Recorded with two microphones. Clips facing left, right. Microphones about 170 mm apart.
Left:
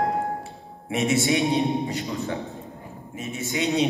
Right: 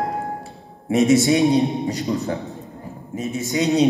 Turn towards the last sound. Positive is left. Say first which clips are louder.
# right 6 dB
turn(degrees=-40)  # may be behind; listen again after turning